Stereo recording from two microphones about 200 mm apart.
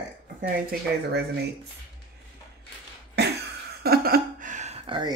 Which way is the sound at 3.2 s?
55° right (ahead or behind).